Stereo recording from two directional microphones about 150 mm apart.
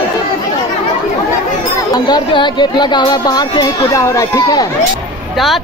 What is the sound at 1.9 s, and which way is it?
Speech, 30° left (ahead or behind).